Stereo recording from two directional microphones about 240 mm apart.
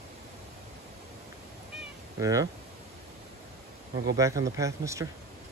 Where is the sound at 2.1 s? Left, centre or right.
Centre.